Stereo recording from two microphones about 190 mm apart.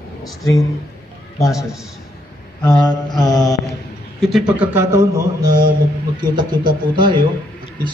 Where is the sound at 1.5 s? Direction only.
Centre (ahead or behind).